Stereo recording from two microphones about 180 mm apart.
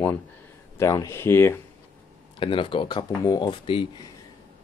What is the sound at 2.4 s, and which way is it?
Speech, 30° left (ahead or behind).